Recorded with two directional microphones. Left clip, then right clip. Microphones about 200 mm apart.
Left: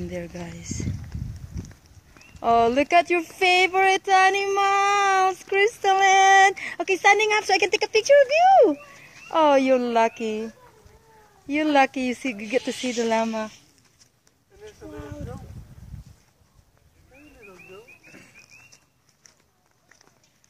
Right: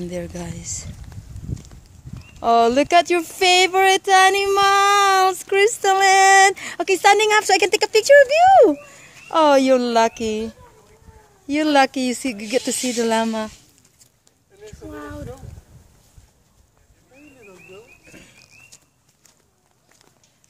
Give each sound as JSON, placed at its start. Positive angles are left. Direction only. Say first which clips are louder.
{"t": 0.0, "sound": "speech", "louder": "right 4 dB", "side_deg": -15}
{"t": 2.4, "sound": "child singing", "louder": "right 4 dB", "side_deg": -20}
{"t": 5.2, "sound": "speech", "louder": "right 4 dB", "side_deg": -15}
{"t": 11.7, "sound": "speech", "louder": "right 3 dB", "side_deg": -20}
{"t": 14.9, "sound": "boat", "louder": "right 5 dB", "side_deg": -25}
{"t": 17.1, "sound": "a sound", "louder": "right 2 dB", "side_deg": -10}